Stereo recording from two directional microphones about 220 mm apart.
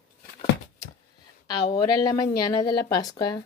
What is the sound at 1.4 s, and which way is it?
A woman's voice, 15° left (ahead or behind).